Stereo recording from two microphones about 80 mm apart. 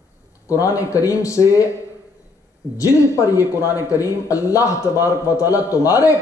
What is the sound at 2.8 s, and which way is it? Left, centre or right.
Speech, left.